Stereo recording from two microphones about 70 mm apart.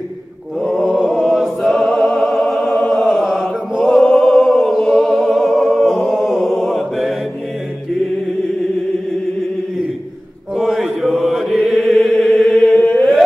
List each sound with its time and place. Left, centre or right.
0.6 s music: centre
10.5 s mantra: centre
11.7 s chant: centre